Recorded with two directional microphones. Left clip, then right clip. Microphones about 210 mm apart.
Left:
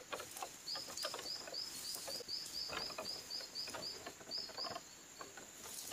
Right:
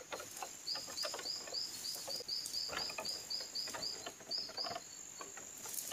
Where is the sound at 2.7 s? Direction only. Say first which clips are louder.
Right 2 dB; 15° right (ahead or behind).